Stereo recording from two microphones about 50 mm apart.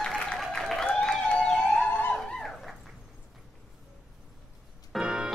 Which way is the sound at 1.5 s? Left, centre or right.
Centre.